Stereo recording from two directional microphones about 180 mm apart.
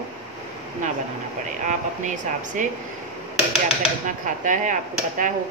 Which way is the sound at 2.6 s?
45° right (ahead or behind).